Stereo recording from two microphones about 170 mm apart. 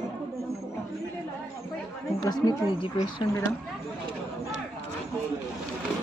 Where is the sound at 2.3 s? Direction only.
25° left (ahead or behind).